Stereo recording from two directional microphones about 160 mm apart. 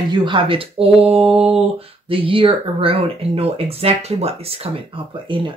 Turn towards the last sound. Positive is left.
turn(degrees=-30)  # may be behind; listen again after turning